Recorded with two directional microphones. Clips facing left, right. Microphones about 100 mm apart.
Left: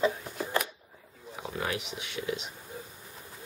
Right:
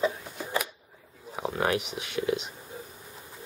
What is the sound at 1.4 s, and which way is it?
Speech, 45° right (ahead or behind).